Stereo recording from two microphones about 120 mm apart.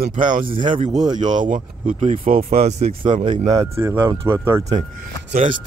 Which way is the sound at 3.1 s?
40° right (ahead or behind).